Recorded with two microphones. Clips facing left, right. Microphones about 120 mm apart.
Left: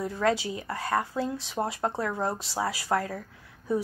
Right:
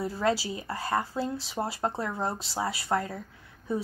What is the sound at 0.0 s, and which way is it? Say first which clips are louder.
A child's voice: left 1 dB; centre (ahead or behind).